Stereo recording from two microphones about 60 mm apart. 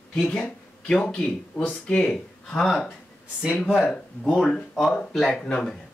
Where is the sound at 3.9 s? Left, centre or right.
Centre.